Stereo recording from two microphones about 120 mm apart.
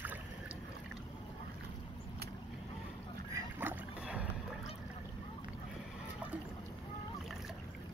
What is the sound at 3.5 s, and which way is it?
Dog, 10° right (ahead or behind).